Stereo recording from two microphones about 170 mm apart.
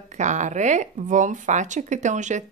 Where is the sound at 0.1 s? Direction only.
45° right (ahead or behind).